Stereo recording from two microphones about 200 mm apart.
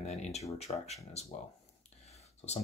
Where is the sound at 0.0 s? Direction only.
30° left (ahead or behind).